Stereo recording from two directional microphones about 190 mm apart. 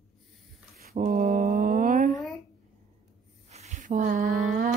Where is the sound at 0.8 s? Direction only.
50° right (ahead or behind).